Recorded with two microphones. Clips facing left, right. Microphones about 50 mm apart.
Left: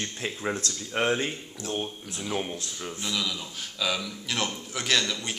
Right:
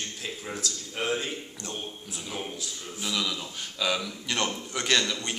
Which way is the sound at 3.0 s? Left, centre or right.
Centre.